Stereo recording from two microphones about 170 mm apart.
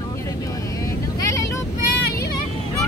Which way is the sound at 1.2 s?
20° left (ahead or behind).